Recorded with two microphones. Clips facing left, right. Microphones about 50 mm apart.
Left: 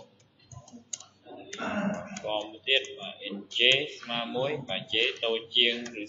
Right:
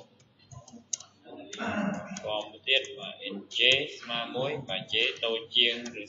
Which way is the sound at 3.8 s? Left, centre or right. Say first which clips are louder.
Left 1 dB; centre.